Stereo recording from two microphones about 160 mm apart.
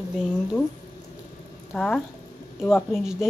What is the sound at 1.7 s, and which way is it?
Speech, 10° left (ahead or behind).